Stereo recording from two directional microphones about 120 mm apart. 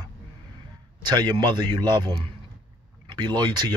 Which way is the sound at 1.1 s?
40° right (ahead or behind).